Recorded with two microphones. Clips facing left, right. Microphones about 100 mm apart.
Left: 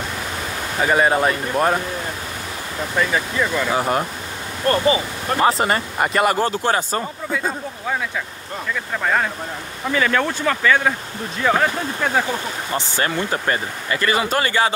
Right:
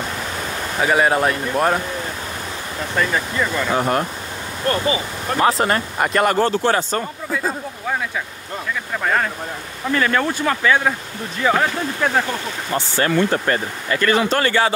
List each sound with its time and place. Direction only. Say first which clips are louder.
0.7 s speech: even; centre (ahead or behind)
3.0 s speech: even; 5° left (ahead or behind)
4.6 s speech: left 3 dB; 35° left (ahead or behind)
5.4 s speech: right 1 dB; centre (ahead or behind)
7.0 s speech: even; centre (ahead or behind)
9.0 s speech: even; 5° left (ahead or behind)
10.4 s speech: even; 10° right (ahead or behind)
11.4 s speech: even; centre (ahead or behind)
12.9 s speech: right 6 dB; 10° left (ahead or behind)